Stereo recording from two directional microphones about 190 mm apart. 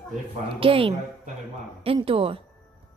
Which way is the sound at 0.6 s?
30° right (ahead or behind).